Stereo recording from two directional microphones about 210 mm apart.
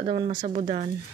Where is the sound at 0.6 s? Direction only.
35° right (ahead or behind).